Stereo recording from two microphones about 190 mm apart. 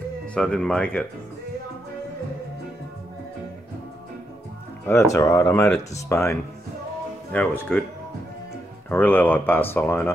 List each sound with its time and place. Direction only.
0.3 s speech: 5° left (ahead or behind)
4.8 s speech: 15° left (ahead or behind)
7.3 s speech: 5° left (ahead or behind)
8.8 s speech: 10° left (ahead or behind)